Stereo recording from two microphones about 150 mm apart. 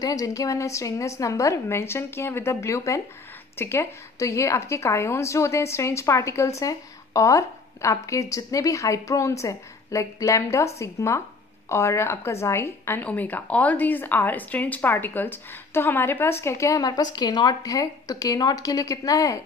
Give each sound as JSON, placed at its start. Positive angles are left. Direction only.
{"t": 0.0, "sound": "a woman's voice", "side_deg": 20}